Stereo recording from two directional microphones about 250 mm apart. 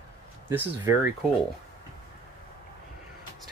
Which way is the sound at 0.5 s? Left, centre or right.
Centre.